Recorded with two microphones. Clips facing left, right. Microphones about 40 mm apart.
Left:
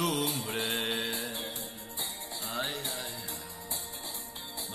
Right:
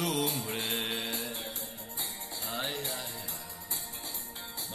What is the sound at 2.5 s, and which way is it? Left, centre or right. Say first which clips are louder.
Music: even; centre.